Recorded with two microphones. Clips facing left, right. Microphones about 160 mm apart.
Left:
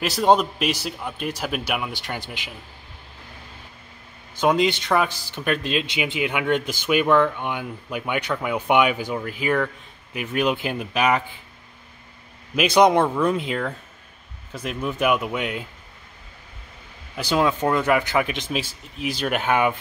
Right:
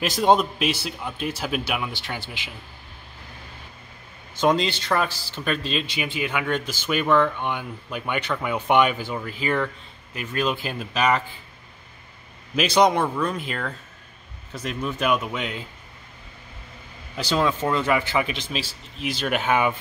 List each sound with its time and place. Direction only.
0.0 s speech: 5° left (ahead or behind)
4.4 s speech: 10° left (ahead or behind)
12.5 s speech: 15° left (ahead or behind)
17.1 s speech: 10° left (ahead or behind)